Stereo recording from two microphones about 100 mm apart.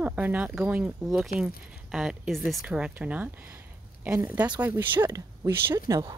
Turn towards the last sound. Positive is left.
turn(degrees=-25)  # may be behind; listen again after turning